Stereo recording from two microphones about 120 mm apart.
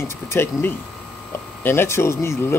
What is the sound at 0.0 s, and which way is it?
Speech, 20° left (ahead or behind).